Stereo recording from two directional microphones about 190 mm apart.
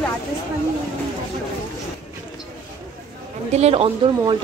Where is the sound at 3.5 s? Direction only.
35° right (ahead or behind).